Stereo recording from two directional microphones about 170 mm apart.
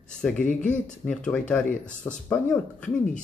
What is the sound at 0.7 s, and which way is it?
Speech, 5° left (ahead or behind).